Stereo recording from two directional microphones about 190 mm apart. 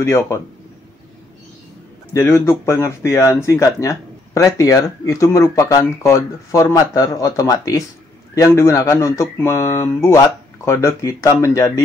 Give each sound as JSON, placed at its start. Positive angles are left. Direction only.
{"t": 0.0, "sound": "speech", "side_deg": 15}
{"t": 2.1, "sound": "speech", "side_deg": 15}